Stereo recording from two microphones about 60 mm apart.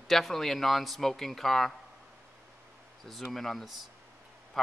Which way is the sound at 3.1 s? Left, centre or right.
Centre.